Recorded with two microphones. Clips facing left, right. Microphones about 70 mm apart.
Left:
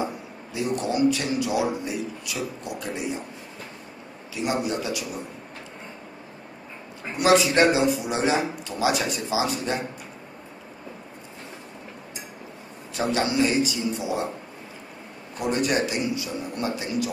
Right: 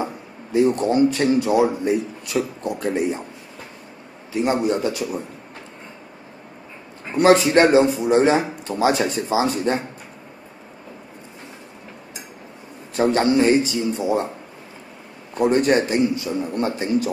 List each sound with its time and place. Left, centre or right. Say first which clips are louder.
0.0 s a man's voice: right 2 dB; right
4.3 s a man's voice: right 6 dB; right
7.2 s a man's voice: right 5 dB; right
12.9 s a man's voice: right 7 dB; right
15.3 s a man's voice: right 7 dB; right